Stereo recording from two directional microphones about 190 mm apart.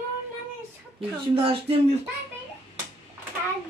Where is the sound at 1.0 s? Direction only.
30° right (ahead or behind).